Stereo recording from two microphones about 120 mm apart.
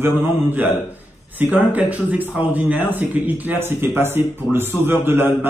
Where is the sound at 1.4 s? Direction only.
15° right (ahead or behind).